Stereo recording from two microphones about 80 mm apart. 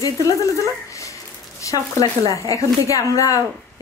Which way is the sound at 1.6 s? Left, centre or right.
Left.